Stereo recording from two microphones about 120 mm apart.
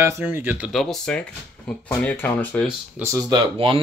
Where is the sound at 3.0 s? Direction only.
25° right (ahead or behind).